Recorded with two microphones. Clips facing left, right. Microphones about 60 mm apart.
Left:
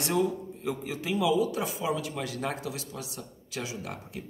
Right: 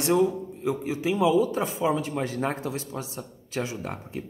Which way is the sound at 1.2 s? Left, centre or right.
Right.